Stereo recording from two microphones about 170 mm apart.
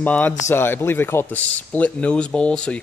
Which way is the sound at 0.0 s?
10° left (ahead or behind).